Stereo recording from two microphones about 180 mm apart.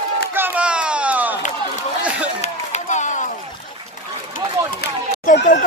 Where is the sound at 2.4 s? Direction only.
40° left (ahead or behind).